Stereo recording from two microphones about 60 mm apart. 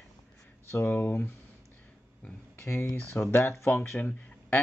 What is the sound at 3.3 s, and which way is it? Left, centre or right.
Speech, left.